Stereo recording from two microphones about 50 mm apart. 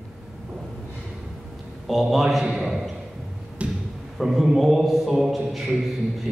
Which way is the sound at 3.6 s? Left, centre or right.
Right.